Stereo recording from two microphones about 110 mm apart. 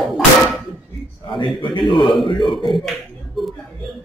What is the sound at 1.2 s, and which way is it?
Speech, 45° left (ahead or behind).